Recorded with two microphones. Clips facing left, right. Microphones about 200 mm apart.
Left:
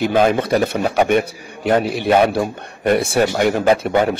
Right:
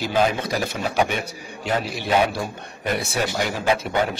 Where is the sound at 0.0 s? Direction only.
55° left (ahead or behind).